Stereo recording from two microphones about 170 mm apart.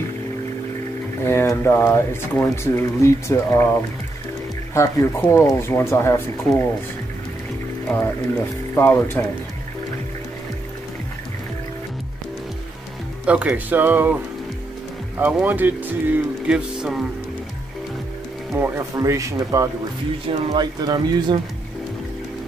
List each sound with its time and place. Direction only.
1.2 s speech: 15° left (ahead or behind)
4.7 s speech: 15° left (ahead or behind)
7.9 s speech: 10° left (ahead or behind)
13.2 s speech: 5° right (ahead or behind)
18.5 s speech: 15° right (ahead or behind)
20.2 s speech: 30° right (ahead or behind)